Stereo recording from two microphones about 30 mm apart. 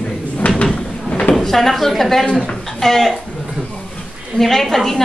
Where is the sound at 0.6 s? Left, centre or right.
Left.